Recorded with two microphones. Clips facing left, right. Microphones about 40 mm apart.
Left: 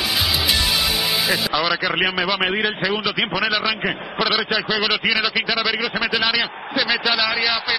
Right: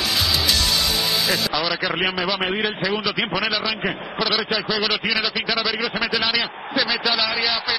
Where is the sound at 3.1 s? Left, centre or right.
Centre.